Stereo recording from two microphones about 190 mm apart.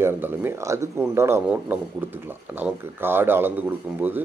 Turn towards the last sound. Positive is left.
turn(degrees=-10)  # may be behind; listen again after turning